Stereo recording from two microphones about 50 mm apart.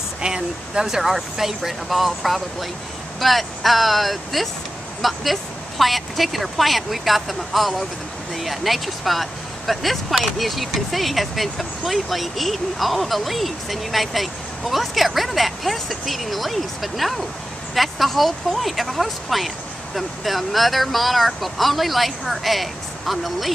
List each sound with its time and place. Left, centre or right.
0.2 s speech: centre
0.8 s speech: centre